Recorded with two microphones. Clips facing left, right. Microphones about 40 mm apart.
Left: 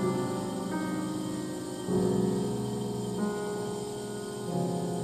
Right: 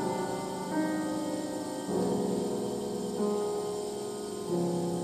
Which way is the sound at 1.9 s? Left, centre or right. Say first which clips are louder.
Left 3 dB; centre.